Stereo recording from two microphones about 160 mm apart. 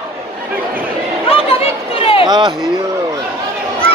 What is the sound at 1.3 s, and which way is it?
Chatter, 35° left (ahead or behind).